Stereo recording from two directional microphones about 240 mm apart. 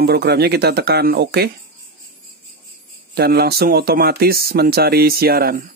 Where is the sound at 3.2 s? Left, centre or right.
Right.